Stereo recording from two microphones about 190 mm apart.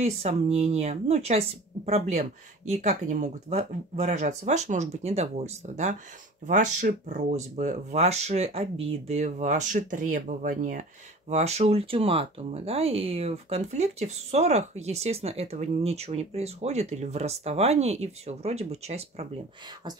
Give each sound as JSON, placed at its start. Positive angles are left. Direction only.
{"t": 0.0, "sound": "speech", "side_deg": -35}